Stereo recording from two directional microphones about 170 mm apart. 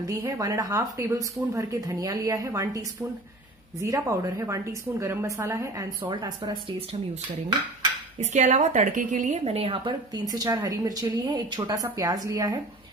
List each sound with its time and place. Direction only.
0.0 s a woman's voice: 20° right (ahead or behind)
6.0 s a woman's voice: 30° right (ahead or behind)
8.2 s a woman's voice: 40° right (ahead or behind); by 12.5 s 20° right (ahead or behind)